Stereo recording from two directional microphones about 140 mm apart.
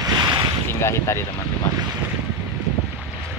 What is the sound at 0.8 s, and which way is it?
Speech, 20° left (ahead or behind).